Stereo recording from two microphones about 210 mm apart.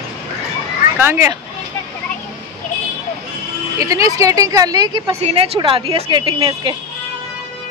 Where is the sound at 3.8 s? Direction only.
15° right (ahead or behind).